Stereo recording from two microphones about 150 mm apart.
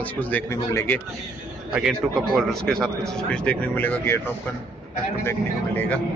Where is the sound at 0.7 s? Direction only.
20° left (ahead or behind).